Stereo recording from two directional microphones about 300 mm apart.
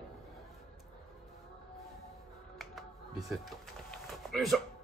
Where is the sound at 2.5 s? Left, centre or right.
Centre.